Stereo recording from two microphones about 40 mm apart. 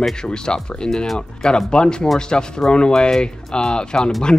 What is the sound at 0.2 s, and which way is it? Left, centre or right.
Speech, centre.